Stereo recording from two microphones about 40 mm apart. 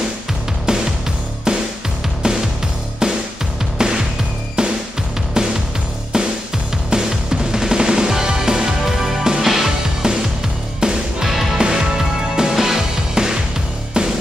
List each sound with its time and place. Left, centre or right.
0.7 s music: centre
2.2 s music: right
10.0 s music: centre